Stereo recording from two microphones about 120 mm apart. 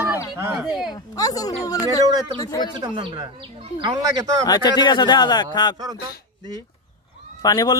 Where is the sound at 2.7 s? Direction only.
40° right (ahead or behind).